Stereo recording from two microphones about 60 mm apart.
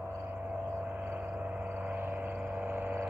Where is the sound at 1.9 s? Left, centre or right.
Right.